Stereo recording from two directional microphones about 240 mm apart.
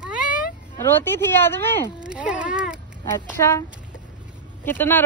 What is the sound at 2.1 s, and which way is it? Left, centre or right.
Speech, centre.